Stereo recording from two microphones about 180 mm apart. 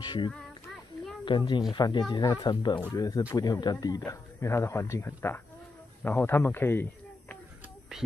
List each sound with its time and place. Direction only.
0.0 s child singing: 25° left (ahead or behind)
1.2 s a man's voice: 30° left (ahead or behind); by 7.3 s 15° left (ahead or behind)